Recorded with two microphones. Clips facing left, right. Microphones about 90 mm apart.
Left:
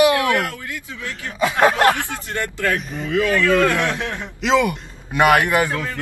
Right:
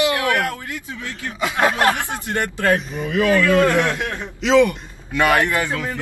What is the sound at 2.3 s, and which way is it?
Speech, 20° right (ahead or behind).